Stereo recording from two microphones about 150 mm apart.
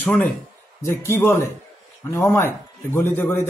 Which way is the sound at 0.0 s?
10° left (ahead or behind).